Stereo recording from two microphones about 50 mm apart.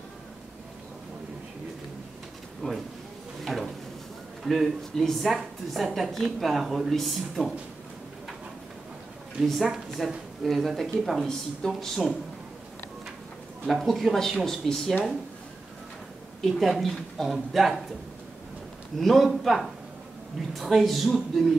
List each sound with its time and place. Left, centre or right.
2.6 s speech: centre
3.4 s a sound: centre
4.5 s speech: centre
9.6 s speech: centre
13.7 s speech: centre
16.3 s speech: centre
18.9 s speech: centre